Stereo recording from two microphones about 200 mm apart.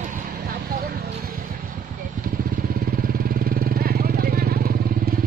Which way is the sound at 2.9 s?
50° right (ahead or behind).